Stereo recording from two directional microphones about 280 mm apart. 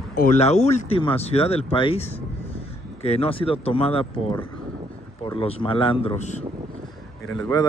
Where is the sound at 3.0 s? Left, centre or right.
Left.